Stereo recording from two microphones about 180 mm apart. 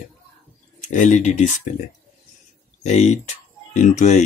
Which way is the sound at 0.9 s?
40° left (ahead or behind).